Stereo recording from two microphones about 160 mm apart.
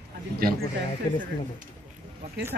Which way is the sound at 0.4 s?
70° right (ahead or behind).